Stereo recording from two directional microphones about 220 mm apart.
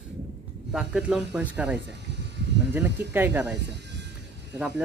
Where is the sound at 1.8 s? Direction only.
50° right (ahead or behind).